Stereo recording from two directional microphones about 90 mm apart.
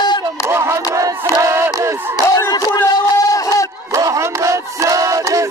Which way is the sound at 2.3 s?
40° left (ahead or behind).